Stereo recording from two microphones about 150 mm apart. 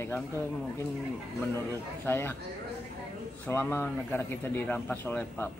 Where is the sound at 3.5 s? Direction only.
15° left (ahead or behind).